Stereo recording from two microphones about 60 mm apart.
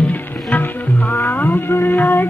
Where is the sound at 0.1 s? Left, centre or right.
Left.